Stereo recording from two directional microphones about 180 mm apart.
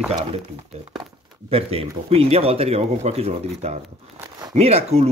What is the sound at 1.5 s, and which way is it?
Speech, 35° right (ahead or behind).